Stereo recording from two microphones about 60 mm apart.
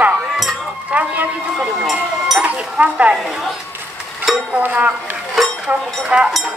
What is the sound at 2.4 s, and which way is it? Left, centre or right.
Speech, right.